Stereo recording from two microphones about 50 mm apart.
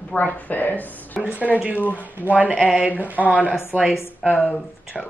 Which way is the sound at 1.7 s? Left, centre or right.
Left.